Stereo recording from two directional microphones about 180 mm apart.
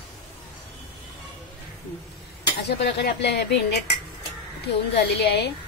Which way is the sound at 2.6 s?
70° left (ahead or behind).